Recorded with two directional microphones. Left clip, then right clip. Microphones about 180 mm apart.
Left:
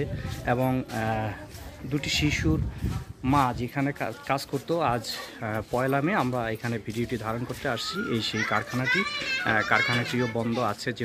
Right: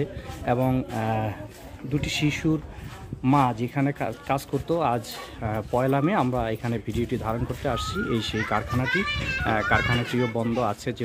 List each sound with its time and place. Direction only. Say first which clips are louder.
0.0 s speech: right 2 dB; centre (ahead or behind)